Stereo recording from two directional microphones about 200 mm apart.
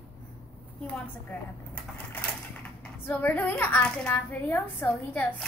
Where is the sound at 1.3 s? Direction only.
10° left (ahead or behind).